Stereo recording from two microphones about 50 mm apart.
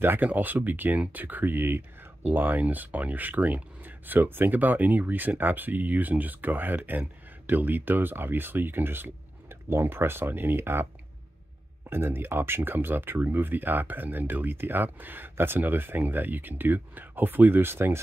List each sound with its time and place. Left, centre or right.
0.2 s speech: right
11.9 s speech: right